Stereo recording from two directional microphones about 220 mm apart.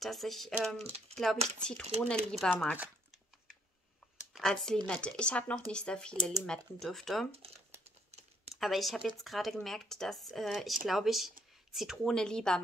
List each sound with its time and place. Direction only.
0.0 s speech: centre (ahead or behind)
4.3 s speech: centre (ahead or behind)
8.1 s typing: 30° right (ahead or behind)
8.5 s speech: centre (ahead or behind)